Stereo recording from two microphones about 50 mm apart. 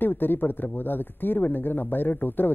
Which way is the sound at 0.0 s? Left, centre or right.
Left.